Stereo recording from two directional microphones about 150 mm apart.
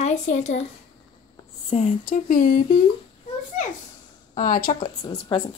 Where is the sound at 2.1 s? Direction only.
65° left (ahead or behind).